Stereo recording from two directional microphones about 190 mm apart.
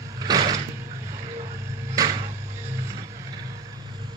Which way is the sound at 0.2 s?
20° right (ahead or behind).